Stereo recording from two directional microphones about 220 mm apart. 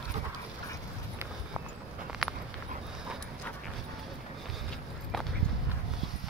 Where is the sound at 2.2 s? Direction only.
Centre (ahead or behind).